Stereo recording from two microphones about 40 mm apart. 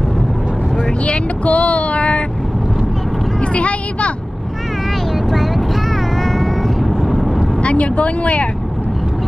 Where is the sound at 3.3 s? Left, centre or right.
Left.